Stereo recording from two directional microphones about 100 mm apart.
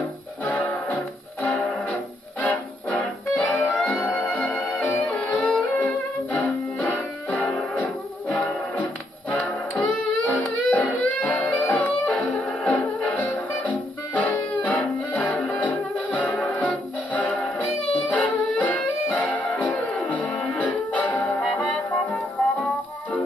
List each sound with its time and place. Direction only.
0.4 s music: 10° left (ahead or behind)
12.1 s brass instrument: 15° left (ahead or behind)
13.6 s music: 15° left (ahead or behind)